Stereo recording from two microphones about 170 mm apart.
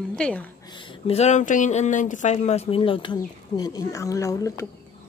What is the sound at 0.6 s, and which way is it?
Speech, 30° left (ahead or behind).